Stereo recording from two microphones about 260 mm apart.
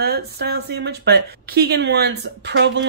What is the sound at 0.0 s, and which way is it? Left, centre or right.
Speech, right.